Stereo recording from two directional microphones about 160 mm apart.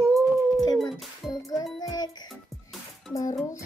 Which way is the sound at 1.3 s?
25° left (ahead or behind).